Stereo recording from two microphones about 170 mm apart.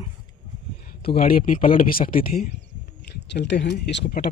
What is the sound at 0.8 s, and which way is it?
Speech, 60° left (ahead or behind).